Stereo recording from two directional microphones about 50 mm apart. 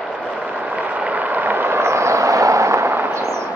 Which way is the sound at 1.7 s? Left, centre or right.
Right.